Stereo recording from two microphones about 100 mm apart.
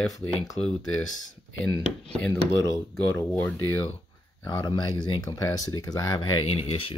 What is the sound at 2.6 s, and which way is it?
Speech, 30° left (ahead or behind).